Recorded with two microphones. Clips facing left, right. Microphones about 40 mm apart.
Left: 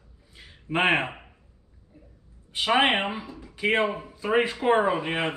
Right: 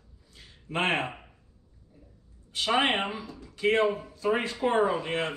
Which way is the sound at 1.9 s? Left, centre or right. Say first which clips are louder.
Left 4 dB; left.